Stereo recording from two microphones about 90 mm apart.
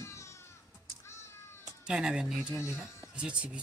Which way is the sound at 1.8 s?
10° right (ahead or behind).